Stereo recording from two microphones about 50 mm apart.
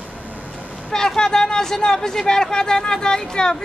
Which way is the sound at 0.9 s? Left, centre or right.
Centre.